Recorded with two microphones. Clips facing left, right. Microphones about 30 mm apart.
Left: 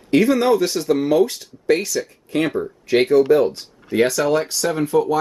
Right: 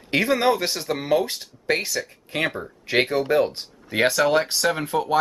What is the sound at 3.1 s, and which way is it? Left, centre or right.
Speech, right.